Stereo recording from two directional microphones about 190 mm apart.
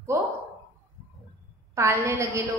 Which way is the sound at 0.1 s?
15° right (ahead or behind).